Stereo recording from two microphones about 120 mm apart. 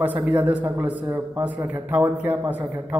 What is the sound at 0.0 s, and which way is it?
A man's voice, 15° right (ahead or behind).